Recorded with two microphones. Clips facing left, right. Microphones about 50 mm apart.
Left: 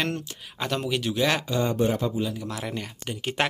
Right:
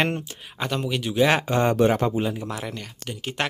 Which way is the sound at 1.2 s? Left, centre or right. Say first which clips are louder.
Right 6 dB; right.